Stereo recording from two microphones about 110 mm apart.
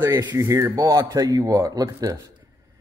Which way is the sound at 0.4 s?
30° right (ahead or behind).